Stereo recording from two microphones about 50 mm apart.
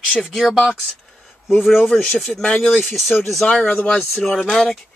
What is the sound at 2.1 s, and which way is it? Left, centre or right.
Speech, centre.